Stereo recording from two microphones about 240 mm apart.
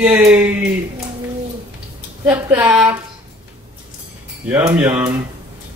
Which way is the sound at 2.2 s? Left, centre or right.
Centre.